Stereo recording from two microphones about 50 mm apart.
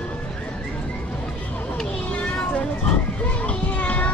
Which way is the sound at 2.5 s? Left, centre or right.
Left.